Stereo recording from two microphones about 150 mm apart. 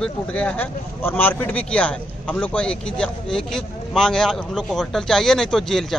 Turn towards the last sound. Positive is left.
turn(degrees=5)  # may be behind; listen again after turning